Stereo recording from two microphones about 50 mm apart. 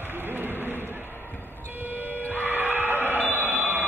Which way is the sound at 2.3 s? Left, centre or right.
Right.